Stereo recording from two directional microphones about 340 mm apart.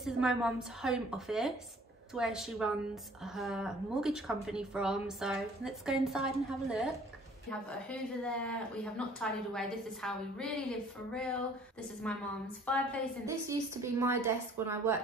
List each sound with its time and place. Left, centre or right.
0.0 s a woman's voice: centre
13.2 s a woman's voice: centre